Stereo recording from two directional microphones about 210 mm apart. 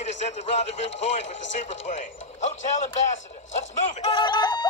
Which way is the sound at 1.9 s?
35° left (ahead or behind).